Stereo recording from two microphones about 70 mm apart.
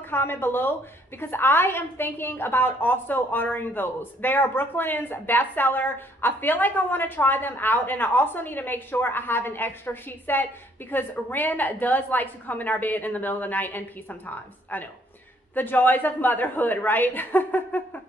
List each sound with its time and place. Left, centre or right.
0.1 s a woman's voice: left